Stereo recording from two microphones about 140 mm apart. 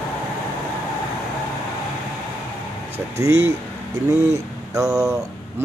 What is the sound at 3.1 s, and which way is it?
Speech, 20° right (ahead or behind).